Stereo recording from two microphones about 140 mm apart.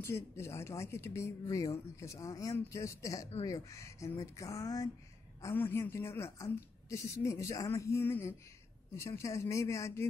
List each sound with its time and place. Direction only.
0.0 s speech: 20° left (ahead or behind)